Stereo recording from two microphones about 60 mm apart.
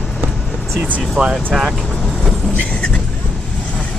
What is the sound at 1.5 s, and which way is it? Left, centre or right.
Speech, centre.